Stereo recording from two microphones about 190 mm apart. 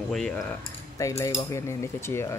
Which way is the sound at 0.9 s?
15° left (ahead or behind).